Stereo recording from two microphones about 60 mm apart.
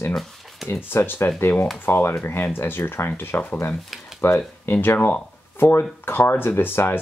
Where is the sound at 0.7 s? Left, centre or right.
Left.